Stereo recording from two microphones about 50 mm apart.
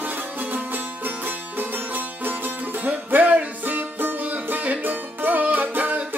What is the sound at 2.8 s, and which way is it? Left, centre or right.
Music, right.